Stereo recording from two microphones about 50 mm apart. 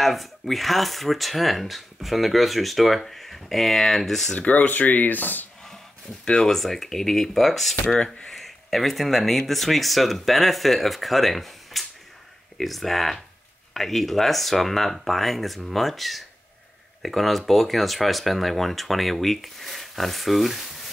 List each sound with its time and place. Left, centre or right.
0.0 s speech: centre
4.4 s speech: left
6.2 s speech: centre